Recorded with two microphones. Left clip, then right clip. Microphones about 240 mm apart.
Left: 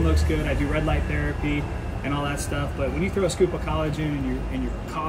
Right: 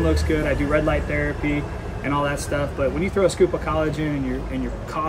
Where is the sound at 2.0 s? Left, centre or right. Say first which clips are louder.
Right 5 dB; centre.